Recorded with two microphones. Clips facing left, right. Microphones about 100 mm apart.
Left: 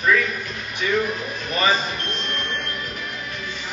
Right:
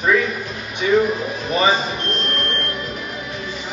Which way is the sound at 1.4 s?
35° right (ahead or behind).